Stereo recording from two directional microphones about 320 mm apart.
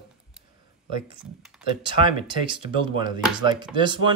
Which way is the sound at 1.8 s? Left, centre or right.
Centre.